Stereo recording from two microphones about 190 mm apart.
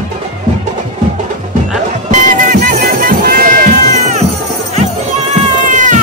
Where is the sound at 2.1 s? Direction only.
40° right (ahead or behind).